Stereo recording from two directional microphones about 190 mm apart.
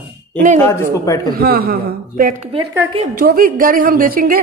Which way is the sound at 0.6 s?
15° left (ahead or behind).